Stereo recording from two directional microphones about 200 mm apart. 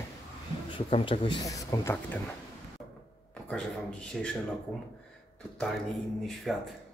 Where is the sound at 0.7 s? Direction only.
25° left (ahead or behind).